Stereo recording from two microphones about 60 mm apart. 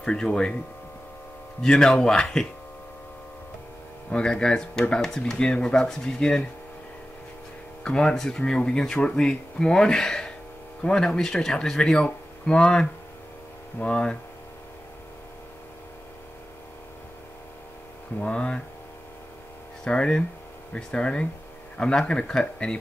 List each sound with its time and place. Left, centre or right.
0.0 s speech: centre
1.6 s speech: centre
4.1 s speech: centre
7.8 s speech: centre
18.2 s speech: centre
19.8 s speech: centre